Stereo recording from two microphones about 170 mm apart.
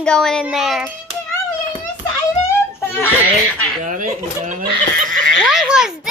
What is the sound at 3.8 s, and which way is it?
Speech, 50° right (ahead or behind).